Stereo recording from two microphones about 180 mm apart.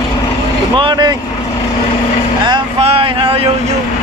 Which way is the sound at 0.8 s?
25° right (ahead or behind).